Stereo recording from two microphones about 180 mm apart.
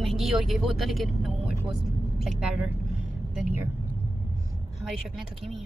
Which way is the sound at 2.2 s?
5° right (ahead or behind).